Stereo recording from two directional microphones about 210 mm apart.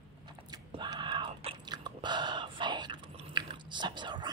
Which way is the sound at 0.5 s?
20° right (ahead or behind).